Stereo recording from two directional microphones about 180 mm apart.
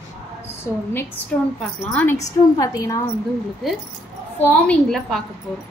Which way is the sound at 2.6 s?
20° left (ahead or behind).